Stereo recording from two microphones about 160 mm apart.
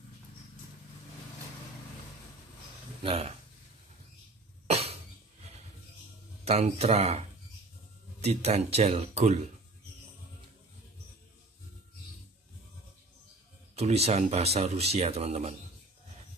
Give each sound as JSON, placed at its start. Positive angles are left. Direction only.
{"t": 3.0, "sound": "speech", "side_deg": -35}
{"t": 4.6, "sound": "cough", "side_deg": -40}
{"t": 6.4, "sound": "speech", "side_deg": -40}
{"t": 13.7, "sound": "speech", "side_deg": -40}